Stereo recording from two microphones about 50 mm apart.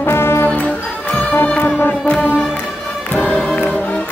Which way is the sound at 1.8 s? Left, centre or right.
Left.